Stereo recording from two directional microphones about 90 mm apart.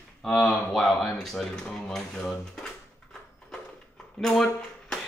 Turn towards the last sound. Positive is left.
turn(degrees=5)  # may be behind; listen again after turning